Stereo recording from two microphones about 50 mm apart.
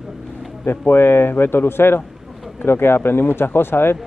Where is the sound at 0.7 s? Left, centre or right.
Left.